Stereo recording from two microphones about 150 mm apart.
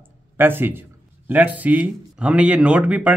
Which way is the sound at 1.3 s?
10° right (ahead or behind).